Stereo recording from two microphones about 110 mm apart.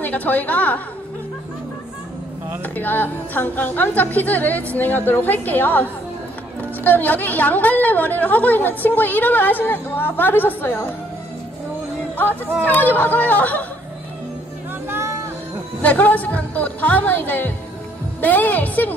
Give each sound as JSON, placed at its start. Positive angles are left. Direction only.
{"t": 0.0, "sound": "a woman's voice", "side_deg": 15}
{"t": 2.6, "sound": "a woman's voice", "side_deg": 15}
{"t": 12.6, "sound": "a woman's voice", "side_deg": 15}
{"t": 14.9, "sound": "music", "side_deg": -25}
{"t": 15.8, "sound": "a woman's voice", "side_deg": 15}